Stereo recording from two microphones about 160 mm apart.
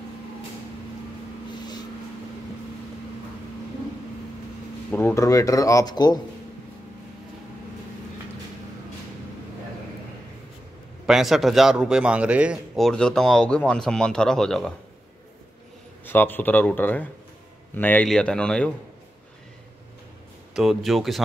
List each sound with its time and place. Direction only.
4.9 s speech: 15° left (ahead or behind)
11.1 s a man's voice: centre (ahead or behind)
16.1 s speech: 15° left (ahead or behind)
20.5 s a man's voice: centre (ahead or behind)